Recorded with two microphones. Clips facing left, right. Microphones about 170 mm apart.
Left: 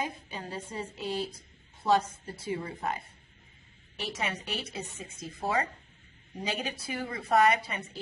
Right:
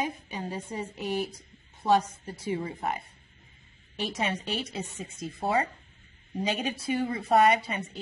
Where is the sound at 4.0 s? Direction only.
30° right (ahead or behind).